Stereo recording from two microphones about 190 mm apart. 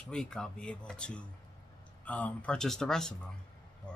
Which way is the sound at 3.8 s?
5° left (ahead or behind).